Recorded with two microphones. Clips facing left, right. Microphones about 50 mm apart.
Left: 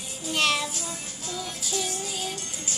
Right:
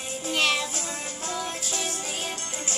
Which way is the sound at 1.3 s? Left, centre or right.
Right.